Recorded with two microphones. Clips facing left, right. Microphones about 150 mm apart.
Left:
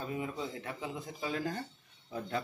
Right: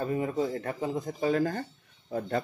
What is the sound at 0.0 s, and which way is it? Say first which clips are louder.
Speech: right 9 dB; 50° right (ahead or behind).